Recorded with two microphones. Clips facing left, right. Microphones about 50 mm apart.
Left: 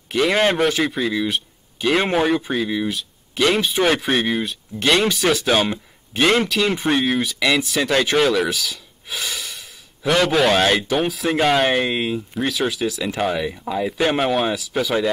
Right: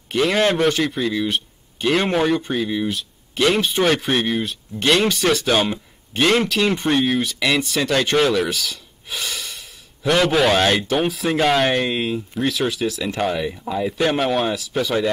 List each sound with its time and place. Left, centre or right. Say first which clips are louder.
0.3 s a man's voice: even; centre
0.6 s speech: even; centre